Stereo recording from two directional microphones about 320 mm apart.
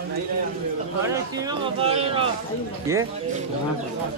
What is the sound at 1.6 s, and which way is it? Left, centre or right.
Speech, centre.